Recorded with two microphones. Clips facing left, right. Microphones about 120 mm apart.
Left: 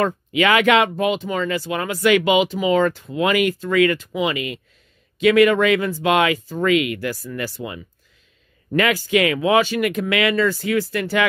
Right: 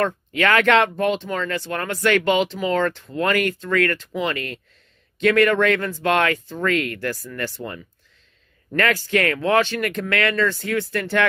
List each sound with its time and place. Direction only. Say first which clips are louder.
0.0 s speech: left 2 dB; 5° left (ahead or behind)